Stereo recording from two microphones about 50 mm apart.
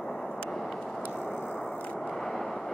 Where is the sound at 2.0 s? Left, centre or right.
Centre.